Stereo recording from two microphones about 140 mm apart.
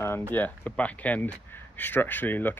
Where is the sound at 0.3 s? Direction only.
10° left (ahead or behind).